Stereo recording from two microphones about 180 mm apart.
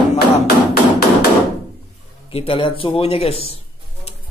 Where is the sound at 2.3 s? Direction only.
30° left (ahead or behind).